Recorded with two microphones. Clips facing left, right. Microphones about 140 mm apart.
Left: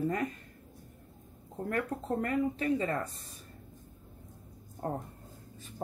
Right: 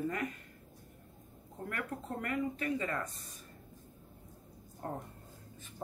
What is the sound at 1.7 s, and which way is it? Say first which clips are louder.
Speech: left 7 dB; 35° left (ahead or behind).